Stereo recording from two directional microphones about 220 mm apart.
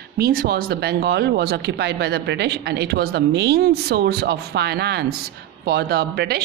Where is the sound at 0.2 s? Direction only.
45° right (ahead or behind).